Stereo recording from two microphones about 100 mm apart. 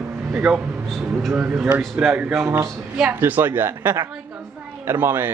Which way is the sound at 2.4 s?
30° right (ahead or behind).